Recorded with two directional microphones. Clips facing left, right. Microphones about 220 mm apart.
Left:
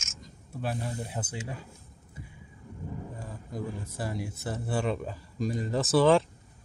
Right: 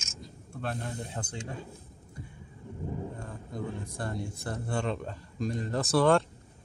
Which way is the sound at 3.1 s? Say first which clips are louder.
Left 1 dB; 5° left (ahead or behind).